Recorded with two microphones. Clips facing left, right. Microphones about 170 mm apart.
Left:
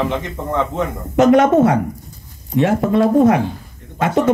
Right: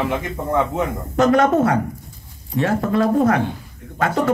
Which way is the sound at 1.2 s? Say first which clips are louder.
Left 4 dB; 20° left (ahead or behind).